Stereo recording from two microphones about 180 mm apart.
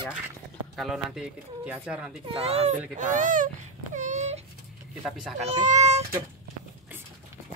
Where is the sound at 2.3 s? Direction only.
35° right (ahead or behind).